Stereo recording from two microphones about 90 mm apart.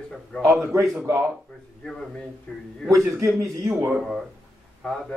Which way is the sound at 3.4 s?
35° right (ahead or behind).